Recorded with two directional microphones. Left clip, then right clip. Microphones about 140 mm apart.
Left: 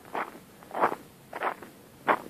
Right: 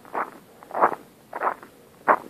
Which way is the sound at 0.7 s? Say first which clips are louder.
Right 6 dB; 15° left (ahead or behind).